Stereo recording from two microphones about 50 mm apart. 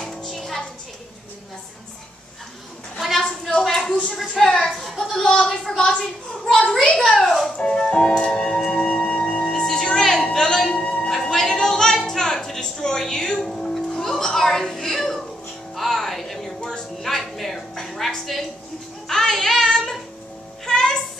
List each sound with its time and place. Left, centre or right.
0.0 s music: centre
3.0 s a sound: centre
5.2 s a man's voice: centre
6.4 s a child's voice: centre
7.5 s music: centre
8.8 s music: centre
10.3 s a sound: centre
10.7 s music: left
11.1 s music: centre
19.0 s child singing: centre
20.6 s music: centre